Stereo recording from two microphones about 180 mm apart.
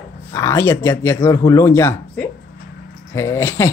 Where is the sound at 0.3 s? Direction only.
15° left (ahead or behind).